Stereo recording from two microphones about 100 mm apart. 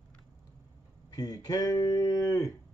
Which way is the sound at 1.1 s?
40° left (ahead or behind).